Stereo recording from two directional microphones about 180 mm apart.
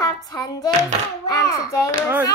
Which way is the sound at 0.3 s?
20° left (ahead or behind).